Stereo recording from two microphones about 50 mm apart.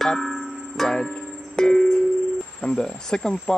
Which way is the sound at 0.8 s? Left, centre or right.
Centre.